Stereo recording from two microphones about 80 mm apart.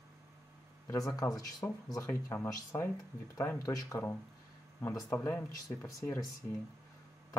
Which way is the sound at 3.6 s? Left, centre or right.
Left.